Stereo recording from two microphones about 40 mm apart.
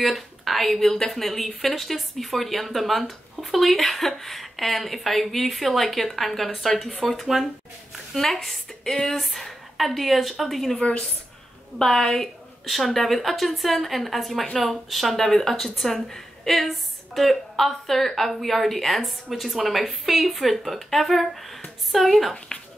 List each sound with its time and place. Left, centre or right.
0.0 s speech: centre
10.8 s speech: left
11.8 s speech: centre
22.5 s a sound: centre